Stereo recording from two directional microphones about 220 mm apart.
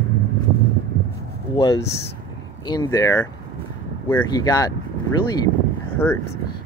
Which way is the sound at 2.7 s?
15° left (ahead or behind).